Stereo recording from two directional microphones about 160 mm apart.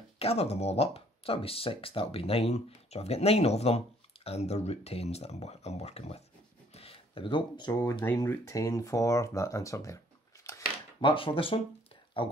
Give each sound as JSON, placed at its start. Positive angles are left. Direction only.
{"t": 0.2, "sound": "speech", "side_deg": 40}
{"t": 8.0, "sound": "speech", "side_deg": 15}
{"t": 11.0, "sound": "speech", "side_deg": 30}